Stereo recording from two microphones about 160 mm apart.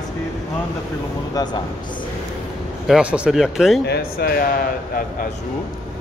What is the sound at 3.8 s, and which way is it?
Speech, 85° left.